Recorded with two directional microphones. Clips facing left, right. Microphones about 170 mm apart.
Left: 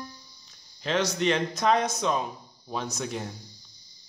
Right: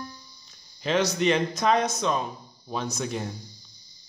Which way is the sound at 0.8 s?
10° right (ahead or behind).